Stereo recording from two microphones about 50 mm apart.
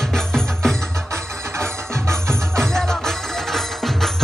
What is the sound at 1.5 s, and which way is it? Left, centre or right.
Music, right.